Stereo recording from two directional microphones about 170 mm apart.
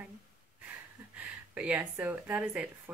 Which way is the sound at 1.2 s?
10° right (ahead or behind).